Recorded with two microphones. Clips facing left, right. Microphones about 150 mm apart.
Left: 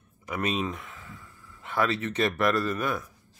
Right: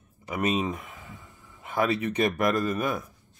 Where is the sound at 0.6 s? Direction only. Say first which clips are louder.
Right 2 dB; 15° right (ahead or behind).